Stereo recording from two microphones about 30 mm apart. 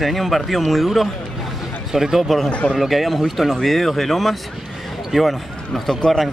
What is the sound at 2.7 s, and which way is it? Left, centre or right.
Speech, centre.